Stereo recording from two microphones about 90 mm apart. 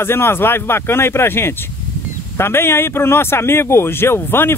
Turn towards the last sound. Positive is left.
turn(degrees=25)  # may be behind; listen again after turning